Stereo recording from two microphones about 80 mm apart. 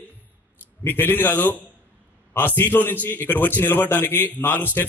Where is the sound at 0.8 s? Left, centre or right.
Left.